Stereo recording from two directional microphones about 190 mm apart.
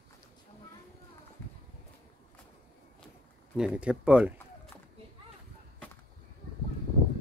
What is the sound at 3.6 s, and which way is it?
Speech, 5° right (ahead or behind).